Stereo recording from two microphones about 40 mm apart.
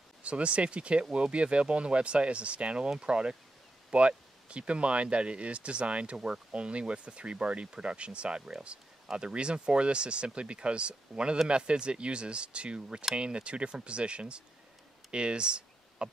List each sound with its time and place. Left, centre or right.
0.2 s speech: right
6.1 s speech: centre
15.0 s clicking: right